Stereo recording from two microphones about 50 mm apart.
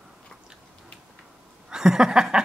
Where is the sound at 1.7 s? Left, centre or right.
Centre.